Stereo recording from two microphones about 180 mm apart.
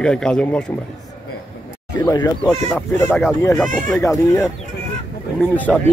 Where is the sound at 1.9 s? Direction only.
20° left (ahead or behind).